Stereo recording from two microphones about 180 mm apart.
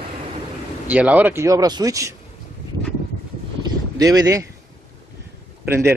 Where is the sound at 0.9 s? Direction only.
10° right (ahead or behind).